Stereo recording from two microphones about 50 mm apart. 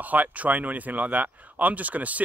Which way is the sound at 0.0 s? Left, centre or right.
Right.